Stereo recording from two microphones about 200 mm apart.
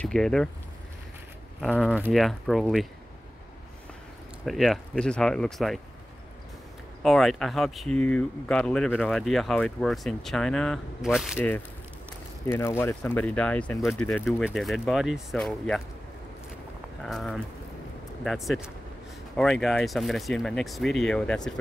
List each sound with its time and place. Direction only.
0.0 s speech: 5° left (ahead or behind)
1.6 s speech: 5° left (ahead or behind)
4.5 s speech: centre (ahead or behind)
7.0 s speech: centre (ahead or behind)
11.3 s speech: 10° left (ahead or behind)
17.0 s speech: centre (ahead or behind)